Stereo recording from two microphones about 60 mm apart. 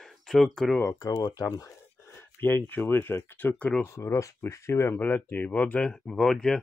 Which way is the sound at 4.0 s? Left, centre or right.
Left.